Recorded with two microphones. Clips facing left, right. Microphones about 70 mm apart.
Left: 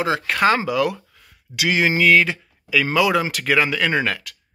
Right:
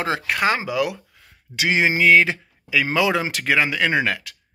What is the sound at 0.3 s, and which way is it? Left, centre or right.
Speech, centre.